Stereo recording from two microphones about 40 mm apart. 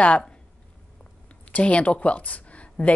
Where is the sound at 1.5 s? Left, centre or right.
Left.